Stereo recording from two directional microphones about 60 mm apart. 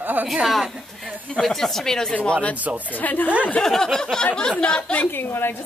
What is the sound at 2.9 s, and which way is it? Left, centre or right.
Speech, left.